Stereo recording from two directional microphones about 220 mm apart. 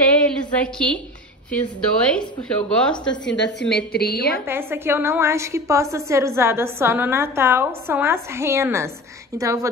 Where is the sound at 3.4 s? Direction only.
50° left (ahead or behind).